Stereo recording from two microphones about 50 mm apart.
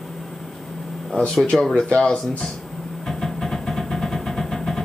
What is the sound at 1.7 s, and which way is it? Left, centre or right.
Speech, centre.